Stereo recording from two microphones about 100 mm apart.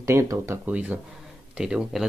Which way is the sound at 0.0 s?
30° right (ahead or behind).